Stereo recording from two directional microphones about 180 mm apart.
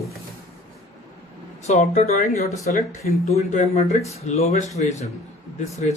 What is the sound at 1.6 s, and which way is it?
Speech, 40° left (ahead or behind).